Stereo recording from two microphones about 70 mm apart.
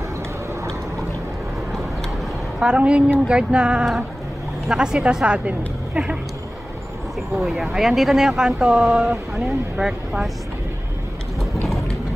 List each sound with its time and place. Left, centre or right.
2.6 s speech: centre
7.3 s speech: centre